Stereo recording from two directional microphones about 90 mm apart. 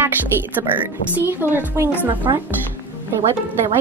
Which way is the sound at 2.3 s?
45° right (ahead or behind).